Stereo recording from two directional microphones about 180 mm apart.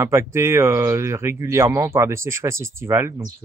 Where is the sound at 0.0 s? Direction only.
15° right (ahead or behind).